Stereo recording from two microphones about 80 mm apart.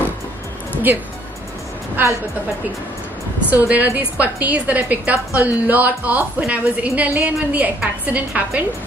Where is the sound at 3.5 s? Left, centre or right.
Right.